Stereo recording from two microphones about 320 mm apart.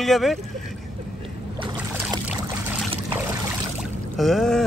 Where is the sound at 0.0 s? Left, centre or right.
Centre.